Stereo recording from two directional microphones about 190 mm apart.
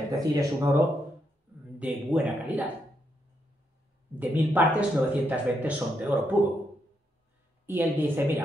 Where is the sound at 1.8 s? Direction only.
10° right (ahead or behind).